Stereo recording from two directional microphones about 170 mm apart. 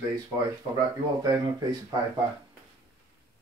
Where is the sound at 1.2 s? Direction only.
25° right (ahead or behind).